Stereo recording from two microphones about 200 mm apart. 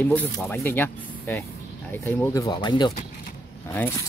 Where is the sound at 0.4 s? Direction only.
10° left (ahead or behind).